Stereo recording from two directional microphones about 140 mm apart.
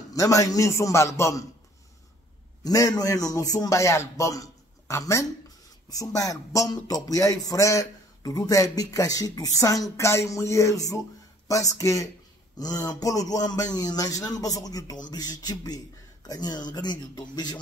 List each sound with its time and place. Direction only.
0.1 s speech: 25° left (ahead or behind)
2.6 s speech: 25° left (ahead or behind)